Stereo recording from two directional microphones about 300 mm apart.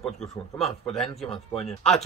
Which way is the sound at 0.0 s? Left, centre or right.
Centre.